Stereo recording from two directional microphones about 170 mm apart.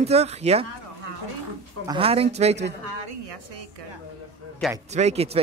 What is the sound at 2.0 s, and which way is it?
Speech, 35° right (ahead or behind).